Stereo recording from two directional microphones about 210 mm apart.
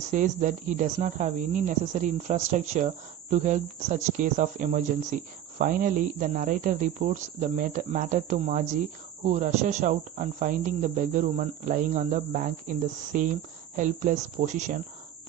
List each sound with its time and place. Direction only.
0.1 s speech: 35° right (ahead or behind)